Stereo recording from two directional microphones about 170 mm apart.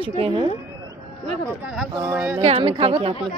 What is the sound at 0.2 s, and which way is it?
Speech, 30° right (ahead or behind).